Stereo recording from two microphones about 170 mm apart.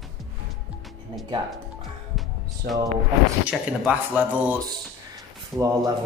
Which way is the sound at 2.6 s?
65° right (ahead or behind).